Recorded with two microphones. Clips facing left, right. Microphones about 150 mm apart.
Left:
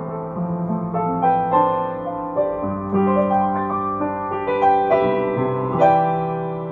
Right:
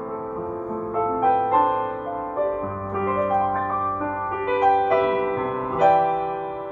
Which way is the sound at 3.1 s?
25° left (ahead or behind).